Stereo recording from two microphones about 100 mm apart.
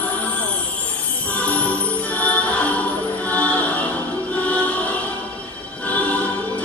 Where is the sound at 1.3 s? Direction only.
15° left (ahead or behind).